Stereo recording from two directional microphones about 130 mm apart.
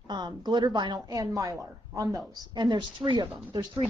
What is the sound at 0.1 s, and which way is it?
A woman's voice, 35° right (ahead or behind).